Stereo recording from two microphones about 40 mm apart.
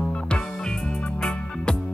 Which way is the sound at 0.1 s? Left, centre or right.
Left.